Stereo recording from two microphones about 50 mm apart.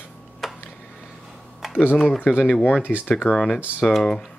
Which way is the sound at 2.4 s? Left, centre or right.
Left.